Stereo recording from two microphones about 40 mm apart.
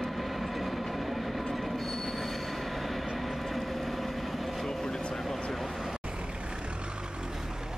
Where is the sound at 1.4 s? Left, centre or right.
Centre.